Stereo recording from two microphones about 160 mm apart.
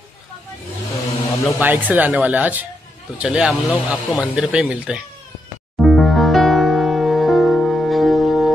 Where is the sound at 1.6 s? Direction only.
10° right (ahead or behind).